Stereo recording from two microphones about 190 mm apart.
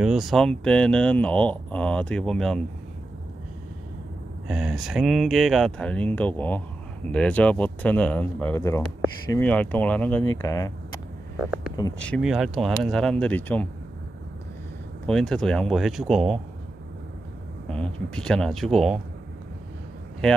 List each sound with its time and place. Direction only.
0.0 s speech: 5° right (ahead or behind)
4.5 s speech: 5° right (ahead or behind); by 10.7 s 15° left (ahead or behind)
12.0 s speech: centre (ahead or behind)
15.0 s speech: 5° left (ahead or behind)
17.6 s speech: 5° left (ahead or behind)